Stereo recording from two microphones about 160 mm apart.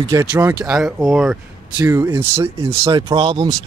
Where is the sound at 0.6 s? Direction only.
5° right (ahead or behind).